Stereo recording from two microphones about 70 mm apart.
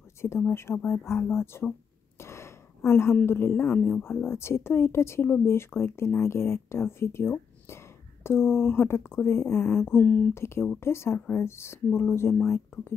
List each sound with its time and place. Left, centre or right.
0.4 s speech: left
2.1 s a sound: left
3.3 s speech: left
11.1 s speech: left
11.4 s speech: left